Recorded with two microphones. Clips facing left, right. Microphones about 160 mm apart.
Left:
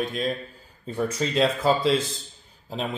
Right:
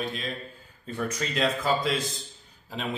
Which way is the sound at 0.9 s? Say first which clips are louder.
Left 5 dB; 30° left (ahead or behind).